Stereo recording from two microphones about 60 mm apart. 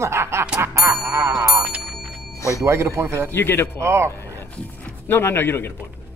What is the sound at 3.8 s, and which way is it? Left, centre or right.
Speech, right.